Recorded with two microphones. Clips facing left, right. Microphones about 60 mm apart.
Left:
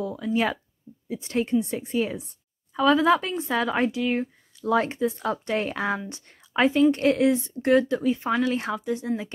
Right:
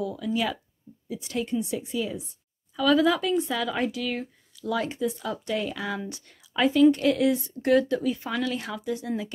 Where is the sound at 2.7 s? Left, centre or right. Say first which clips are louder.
Left 2 dB; left.